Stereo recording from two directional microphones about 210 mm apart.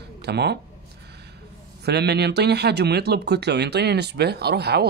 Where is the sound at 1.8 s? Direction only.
50° right (ahead or behind).